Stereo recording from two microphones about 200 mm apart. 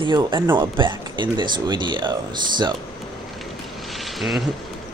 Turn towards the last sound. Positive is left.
turn(degrees=0)  # may be behind; listen again after turning